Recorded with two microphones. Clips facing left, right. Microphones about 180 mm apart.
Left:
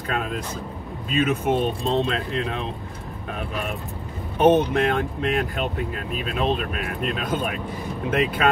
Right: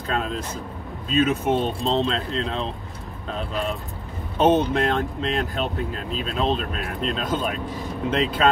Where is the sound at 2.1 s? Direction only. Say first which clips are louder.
Even; 10° left (ahead or behind).